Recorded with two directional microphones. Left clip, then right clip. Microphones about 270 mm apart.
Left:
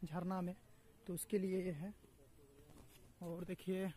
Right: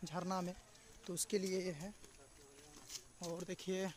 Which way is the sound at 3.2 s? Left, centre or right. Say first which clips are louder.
Right 2 dB; centre.